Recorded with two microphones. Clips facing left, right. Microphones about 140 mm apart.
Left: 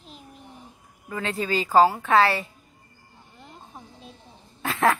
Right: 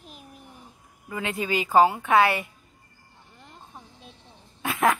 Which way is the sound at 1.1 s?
15° right (ahead or behind).